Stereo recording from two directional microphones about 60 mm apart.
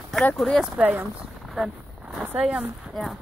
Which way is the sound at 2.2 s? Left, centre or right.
Centre.